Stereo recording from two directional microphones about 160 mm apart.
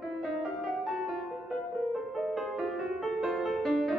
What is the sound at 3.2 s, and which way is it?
Music, centre (ahead or behind).